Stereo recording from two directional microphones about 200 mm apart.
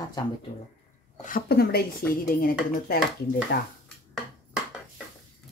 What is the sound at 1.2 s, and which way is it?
Speech, 50° left (ahead or behind).